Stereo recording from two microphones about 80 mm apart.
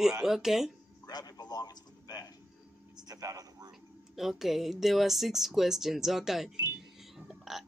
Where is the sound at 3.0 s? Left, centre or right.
Right.